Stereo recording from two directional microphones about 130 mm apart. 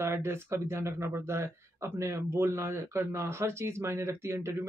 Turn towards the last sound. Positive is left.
turn(degrees=-20)  # may be behind; listen again after turning